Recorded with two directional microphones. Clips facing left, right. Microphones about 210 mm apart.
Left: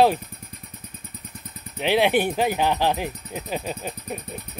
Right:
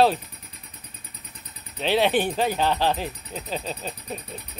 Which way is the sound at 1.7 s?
15° left (ahead or behind).